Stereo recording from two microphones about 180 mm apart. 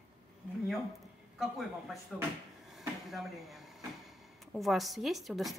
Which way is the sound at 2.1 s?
5° left (ahead or behind).